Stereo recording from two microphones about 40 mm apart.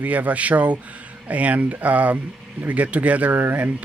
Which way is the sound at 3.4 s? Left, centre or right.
Right.